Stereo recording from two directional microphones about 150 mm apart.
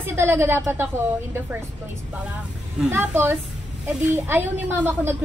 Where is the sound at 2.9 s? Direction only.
15° right (ahead or behind).